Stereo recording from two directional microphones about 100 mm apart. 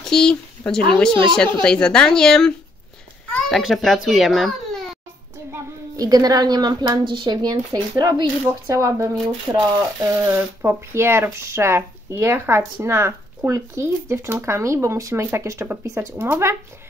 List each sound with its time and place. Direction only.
0.0 s a woman's voice: 5° left (ahead or behind)
5.9 s speech: 40° right (ahead or behind); by 16.5 s 25° right (ahead or behind)